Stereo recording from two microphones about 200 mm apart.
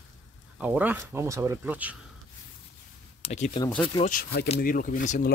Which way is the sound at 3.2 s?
30° left (ahead or behind).